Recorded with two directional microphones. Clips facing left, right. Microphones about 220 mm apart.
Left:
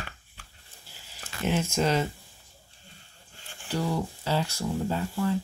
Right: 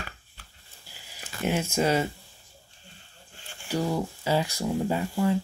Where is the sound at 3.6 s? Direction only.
10° right (ahead or behind).